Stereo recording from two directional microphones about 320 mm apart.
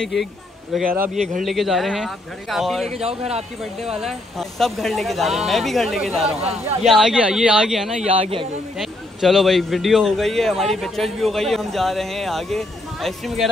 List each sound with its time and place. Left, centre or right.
0.0 s a man's voice: centre
2.9 s speech: centre
4.0 s a man's voice: centre
8.0 s speech: centre
8.7 s a man's voice: centre